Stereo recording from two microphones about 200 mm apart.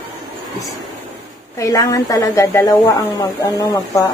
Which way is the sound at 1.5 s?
15° left (ahead or behind).